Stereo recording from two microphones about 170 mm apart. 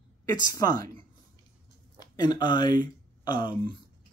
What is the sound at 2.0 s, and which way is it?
Speech, 25° left (ahead or behind).